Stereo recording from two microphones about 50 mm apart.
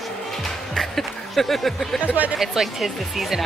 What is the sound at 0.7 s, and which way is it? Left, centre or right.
Music, centre.